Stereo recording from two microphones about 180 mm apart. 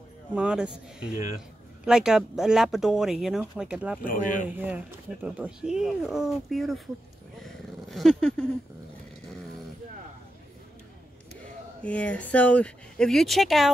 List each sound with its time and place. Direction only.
0.3 s speech: 5° right (ahead or behind)
4.0 s speech: 50° left (ahead or behind)
4.6 s speech: 10° right (ahead or behind)
7.4 s dog: centre (ahead or behind)
11.8 s speech: 5° left (ahead or behind)